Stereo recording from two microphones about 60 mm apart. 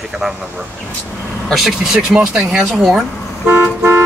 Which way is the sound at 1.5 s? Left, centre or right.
Centre.